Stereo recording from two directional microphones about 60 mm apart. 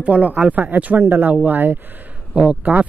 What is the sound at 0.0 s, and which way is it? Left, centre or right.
Speech, right.